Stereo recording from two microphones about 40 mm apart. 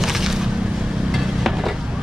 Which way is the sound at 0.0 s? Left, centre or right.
Centre.